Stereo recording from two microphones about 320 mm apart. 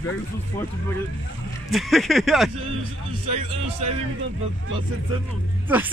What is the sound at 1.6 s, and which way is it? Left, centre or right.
Speech, centre.